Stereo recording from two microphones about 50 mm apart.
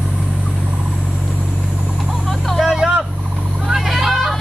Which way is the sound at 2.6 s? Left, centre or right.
Centre.